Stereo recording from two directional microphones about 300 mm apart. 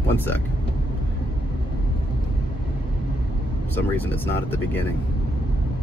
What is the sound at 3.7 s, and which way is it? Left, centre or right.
Speech, centre.